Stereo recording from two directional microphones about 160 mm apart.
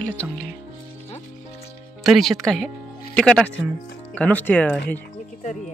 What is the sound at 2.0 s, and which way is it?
Speech, centre (ahead or behind).